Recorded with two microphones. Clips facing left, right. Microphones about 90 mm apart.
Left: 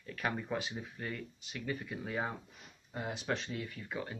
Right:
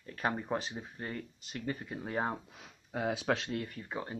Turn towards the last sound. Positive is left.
turn(degrees=-30)  # may be behind; listen again after turning